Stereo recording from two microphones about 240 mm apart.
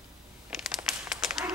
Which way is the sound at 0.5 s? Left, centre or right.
Centre.